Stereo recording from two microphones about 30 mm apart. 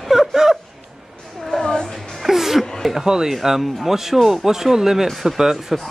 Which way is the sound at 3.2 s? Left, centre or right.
Centre.